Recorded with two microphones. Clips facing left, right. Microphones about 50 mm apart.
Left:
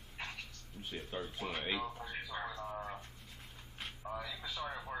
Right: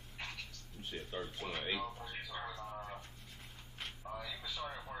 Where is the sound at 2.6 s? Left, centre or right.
Left.